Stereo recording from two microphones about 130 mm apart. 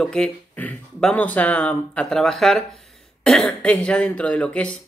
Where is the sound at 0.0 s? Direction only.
5° left (ahead or behind).